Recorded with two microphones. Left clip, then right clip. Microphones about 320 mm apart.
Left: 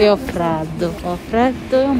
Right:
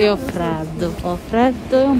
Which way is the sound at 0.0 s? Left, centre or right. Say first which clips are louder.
Left 3 dB; centre.